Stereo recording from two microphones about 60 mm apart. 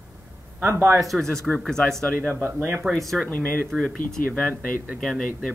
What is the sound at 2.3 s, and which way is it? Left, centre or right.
Speech, right.